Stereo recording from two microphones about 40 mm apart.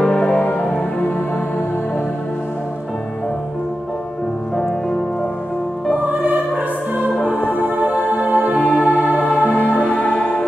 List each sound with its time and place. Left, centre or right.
0.0 s music: left
6.0 s music: right
7.4 s music: right
8.5 s music: left
9.7 s music: left